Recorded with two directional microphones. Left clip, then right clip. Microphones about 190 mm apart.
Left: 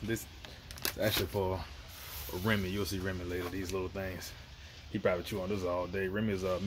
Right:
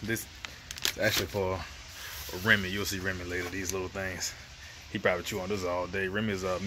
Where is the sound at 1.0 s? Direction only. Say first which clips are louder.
Right 3 dB; 5° right (ahead or behind).